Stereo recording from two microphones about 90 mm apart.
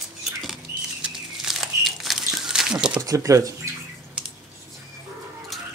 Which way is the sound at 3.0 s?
35° right (ahead or behind).